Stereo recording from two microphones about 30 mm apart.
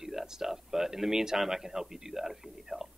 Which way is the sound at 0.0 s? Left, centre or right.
Centre.